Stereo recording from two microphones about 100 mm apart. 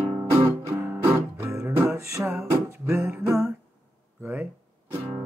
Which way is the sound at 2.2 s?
10° right (ahead or behind).